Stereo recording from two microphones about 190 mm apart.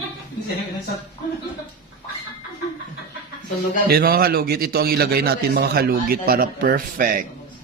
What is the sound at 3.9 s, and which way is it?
Speech, 55° right (ahead or behind).